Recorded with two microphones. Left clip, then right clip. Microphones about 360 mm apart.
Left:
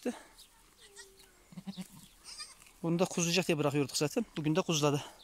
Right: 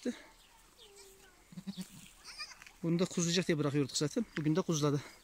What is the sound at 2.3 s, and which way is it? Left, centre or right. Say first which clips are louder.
Speech: right 2 dB; centre.